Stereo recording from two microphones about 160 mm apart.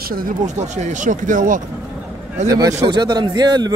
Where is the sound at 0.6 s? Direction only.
45° right (ahead or behind).